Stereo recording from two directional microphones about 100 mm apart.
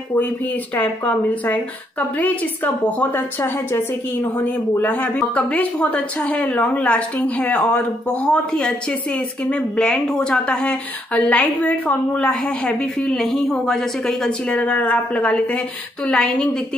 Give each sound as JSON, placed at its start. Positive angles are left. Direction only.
{"t": 0.7, "sound": "a woman's voice", "side_deg": 15}